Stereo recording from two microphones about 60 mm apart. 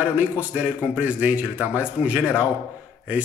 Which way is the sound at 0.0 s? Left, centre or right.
Right.